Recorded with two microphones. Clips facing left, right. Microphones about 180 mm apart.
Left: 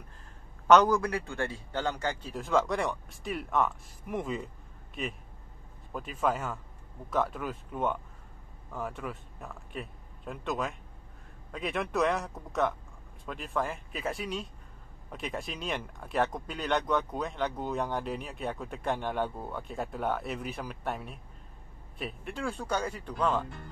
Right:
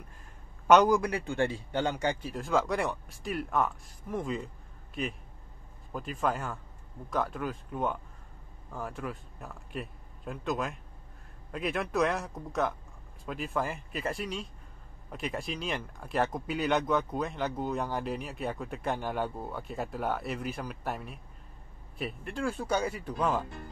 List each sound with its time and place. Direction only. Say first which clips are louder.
0.7 s a man's voice: even; 10° right (ahead or behind)
2.3 s a man's voice: left 3 dB; centre (ahead or behind)